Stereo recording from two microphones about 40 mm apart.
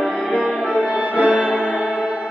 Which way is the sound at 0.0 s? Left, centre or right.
Centre.